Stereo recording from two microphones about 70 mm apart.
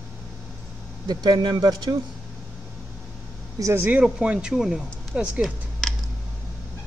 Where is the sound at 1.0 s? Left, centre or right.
Right.